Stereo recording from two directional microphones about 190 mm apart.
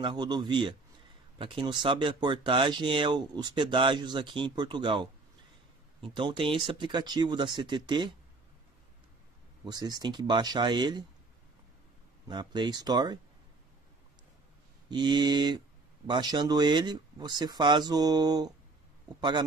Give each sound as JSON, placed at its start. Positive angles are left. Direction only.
{"t": 0.0, "sound": "speech", "side_deg": -25}
{"t": 9.7, "sound": "speech", "side_deg": -20}
{"t": 12.3, "sound": "speech", "side_deg": -25}
{"t": 14.9, "sound": "speech", "side_deg": -25}